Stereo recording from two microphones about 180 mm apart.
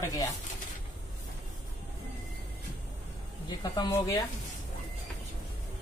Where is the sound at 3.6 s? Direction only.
20° left (ahead or behind).